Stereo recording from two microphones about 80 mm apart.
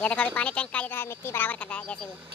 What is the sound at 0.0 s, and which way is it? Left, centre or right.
Speech, centre.